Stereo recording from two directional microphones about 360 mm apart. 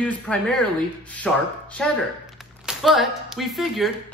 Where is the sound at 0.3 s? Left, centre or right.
Centre.